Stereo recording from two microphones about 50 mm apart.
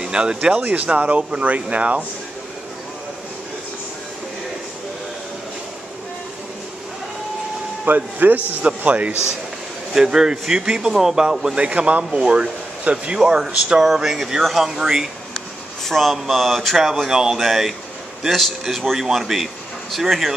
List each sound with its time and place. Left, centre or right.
0.0 s speech: centre
7.8 s speech: right
8.6 s speech: right
9.9 s speech: centre
15.8 s speech: centre